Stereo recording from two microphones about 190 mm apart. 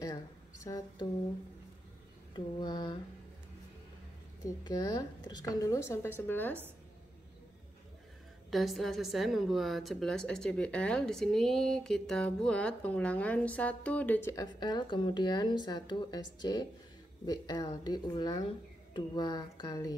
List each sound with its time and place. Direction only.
0.7 s speech: 20° left (ahead or behind)
2.3 s a woman's voice: 25° left (ahead or behind)
4.5 s speech: 20° left (ahead or behind)
8.5 s a woman's voice: centre (ahead or behind); by 20.0 s 20° left (ahead or behind)